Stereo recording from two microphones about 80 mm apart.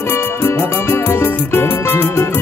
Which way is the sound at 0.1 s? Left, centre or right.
Left.